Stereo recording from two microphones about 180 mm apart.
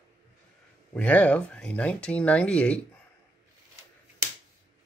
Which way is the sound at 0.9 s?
10° left (ahead or behind).